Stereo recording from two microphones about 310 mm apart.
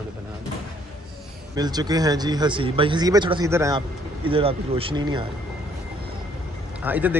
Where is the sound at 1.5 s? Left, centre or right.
Centre.